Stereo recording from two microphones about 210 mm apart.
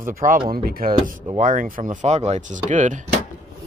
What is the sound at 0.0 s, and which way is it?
Speech, 40° right (ahead or behind).